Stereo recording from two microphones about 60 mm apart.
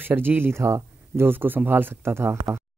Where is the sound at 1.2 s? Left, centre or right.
Right.